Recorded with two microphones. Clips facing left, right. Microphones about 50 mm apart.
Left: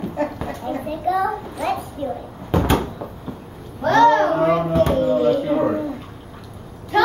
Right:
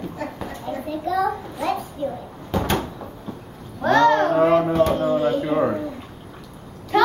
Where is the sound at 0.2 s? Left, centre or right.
Left.